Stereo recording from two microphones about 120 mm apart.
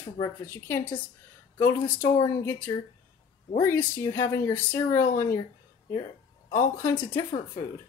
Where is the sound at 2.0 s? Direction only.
20° left (ahead or behind).